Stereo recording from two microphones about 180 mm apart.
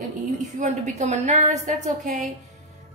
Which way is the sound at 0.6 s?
40° right (ahead or behind).